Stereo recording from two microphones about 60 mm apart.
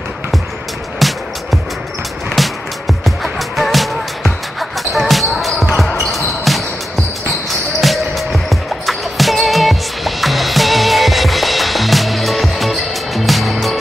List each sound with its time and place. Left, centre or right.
0.9 s music: centre
5.8 s basketball bounce: centre
7.8 s music: centre